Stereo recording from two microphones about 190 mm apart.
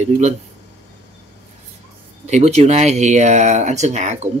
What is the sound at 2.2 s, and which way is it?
Speech, 35° right (ahead or behind).